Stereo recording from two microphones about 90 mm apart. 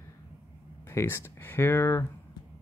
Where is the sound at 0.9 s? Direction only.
30° left (ahead or behind).